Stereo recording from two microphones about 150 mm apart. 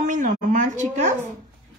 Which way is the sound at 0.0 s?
60° right (ahead or behind).